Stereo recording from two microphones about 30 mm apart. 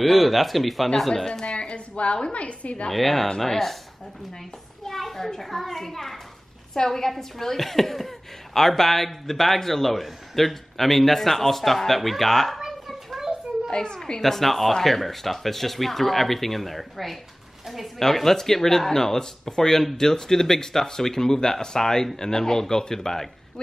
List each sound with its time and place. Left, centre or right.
0.0 s a man's voice: centre
0.8 s speech: centre
1.4 s a woman's voice: left
2.9 s a man's voice: centre
4.8 s a child's voice: centre
13.7 s a woman's voice: left
14.2 s a man's voice: centre
17.9 s speech: centre
19.8 s a man's voice: centre
20.1 s speech: centre